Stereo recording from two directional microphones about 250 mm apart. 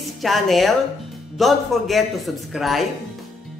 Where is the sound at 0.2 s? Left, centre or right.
Centre.